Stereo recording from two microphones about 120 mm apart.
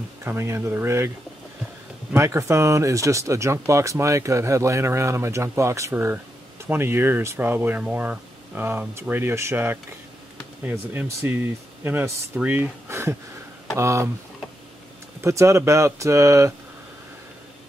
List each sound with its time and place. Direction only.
0.2 s speech: 20° right (ahead or behind)
2.1 s speech: 25° right (ahead or behind)
15.2 s speech: 25° right (ahead or behind)